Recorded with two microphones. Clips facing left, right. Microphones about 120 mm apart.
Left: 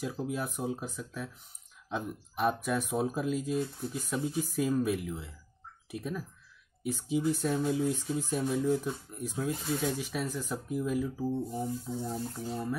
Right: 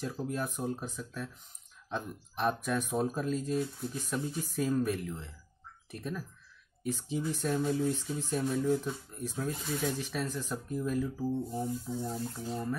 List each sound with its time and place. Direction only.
0.0 s speech: 10° left (ahead or behind)